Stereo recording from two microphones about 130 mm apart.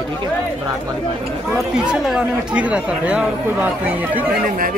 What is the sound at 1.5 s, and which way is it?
Speech, 5° right (ahead or behind).